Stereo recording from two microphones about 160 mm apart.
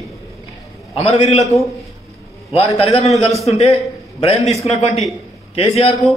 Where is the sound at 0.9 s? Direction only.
35° left (ahead or behind).